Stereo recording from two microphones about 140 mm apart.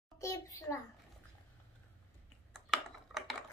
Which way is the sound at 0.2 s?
25° left (ahead or behind).